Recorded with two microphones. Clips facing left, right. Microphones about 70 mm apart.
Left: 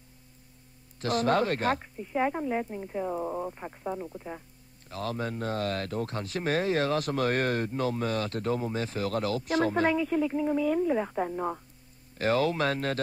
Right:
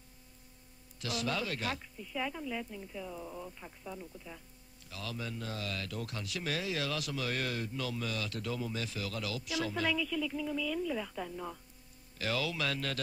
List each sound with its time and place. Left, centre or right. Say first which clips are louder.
1.0 s speech: left 10 dB; left